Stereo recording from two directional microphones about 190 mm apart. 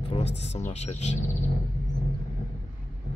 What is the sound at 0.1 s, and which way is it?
Speech, 35° left (ahead or behind).